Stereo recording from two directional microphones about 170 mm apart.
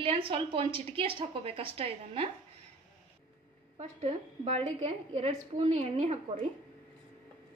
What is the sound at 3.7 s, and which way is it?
A woman's voice, 40° right (ahead or behind).